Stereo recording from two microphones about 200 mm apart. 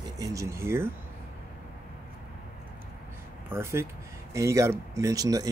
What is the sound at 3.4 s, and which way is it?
Speech, 10° right (ahead or behind).